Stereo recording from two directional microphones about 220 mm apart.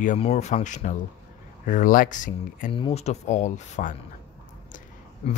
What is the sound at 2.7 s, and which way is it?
Speech, 25° left (ahead or behind).